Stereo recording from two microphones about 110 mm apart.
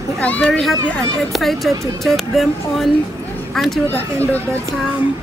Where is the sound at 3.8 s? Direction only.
15° left (ahead or behind).